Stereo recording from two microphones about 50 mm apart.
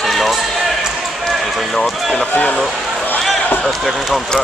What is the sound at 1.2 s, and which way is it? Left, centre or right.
Speech, centre.